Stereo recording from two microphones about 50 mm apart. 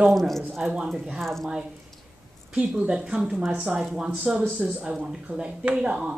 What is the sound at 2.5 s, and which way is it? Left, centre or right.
Speech, right.